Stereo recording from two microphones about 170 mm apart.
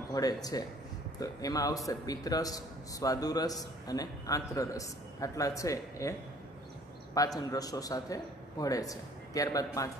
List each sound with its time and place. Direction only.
0.1 s a man's voice: 20° left (ahead or behind)
7.2 s a man's voice: 20° left (ahead or behind)